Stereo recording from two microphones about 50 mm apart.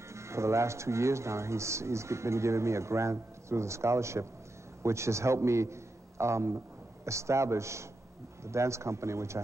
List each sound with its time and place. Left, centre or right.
0.1 s a man's voice: right